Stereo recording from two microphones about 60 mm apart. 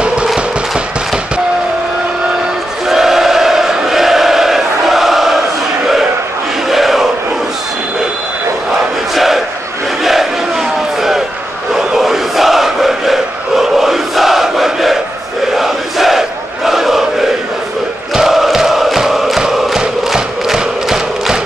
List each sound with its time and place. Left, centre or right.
0.0 s music: centre
2.9 s a sound: centre
6.7 s a sound: centre
9.1 s battle cry: centre
10.0 s crowd: centre
18.1 s chant: centre